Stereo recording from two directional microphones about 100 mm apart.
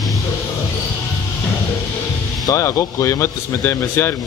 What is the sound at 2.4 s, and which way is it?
Speech, 30° left (ahead or behind).